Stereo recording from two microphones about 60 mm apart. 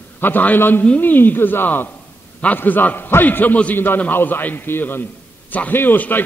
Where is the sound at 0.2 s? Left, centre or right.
Left.